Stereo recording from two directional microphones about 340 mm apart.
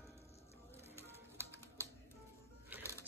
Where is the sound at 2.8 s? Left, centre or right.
Centre.